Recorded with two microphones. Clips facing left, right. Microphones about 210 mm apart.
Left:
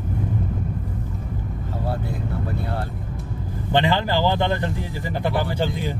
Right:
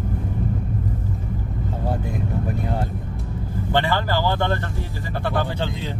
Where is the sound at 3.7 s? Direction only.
20° left (ahead or behind).